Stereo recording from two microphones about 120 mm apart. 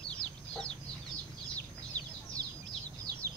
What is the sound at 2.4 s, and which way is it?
Bird, 35° right (ahead or behind).